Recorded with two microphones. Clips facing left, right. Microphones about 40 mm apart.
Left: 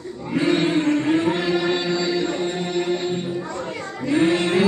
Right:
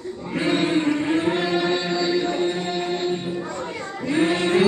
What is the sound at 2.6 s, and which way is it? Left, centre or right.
Choir, centre.